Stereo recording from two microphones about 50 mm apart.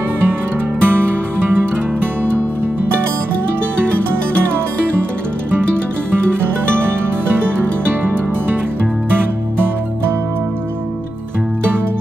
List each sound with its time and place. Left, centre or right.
0.8 s music: right